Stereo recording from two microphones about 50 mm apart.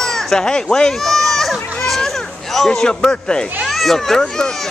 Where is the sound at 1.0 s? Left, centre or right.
Centre.